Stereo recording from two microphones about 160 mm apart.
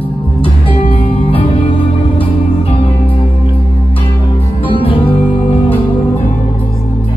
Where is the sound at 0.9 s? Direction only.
35° left (ahead or behind).